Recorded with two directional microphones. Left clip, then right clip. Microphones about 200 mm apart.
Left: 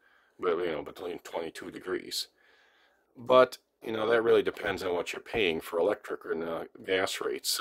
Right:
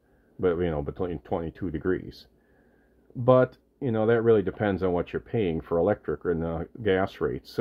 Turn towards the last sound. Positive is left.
turn(degrees=30)  # may be behind; listen again after turning